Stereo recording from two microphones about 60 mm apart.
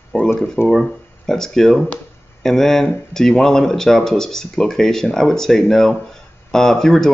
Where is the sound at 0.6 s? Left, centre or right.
Centre.